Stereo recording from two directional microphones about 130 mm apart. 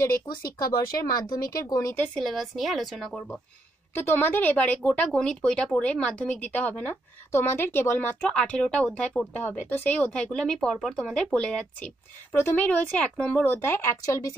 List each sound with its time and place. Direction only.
0.0 s speech: 25° left (ahead or behind)
2.1 s a woman's voice: centre (ahead or behind)
4.0 s speech: 15° left (ahead or behind)